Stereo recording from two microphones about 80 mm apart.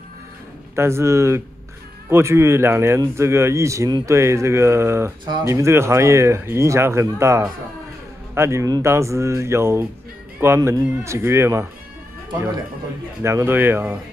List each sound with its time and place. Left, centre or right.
0.7 s speech: right
13.2 s speech: right